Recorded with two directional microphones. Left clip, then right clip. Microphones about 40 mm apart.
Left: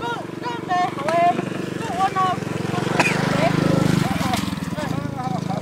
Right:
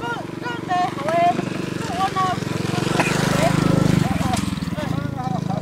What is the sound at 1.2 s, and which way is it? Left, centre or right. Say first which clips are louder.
Vehicle: even; right.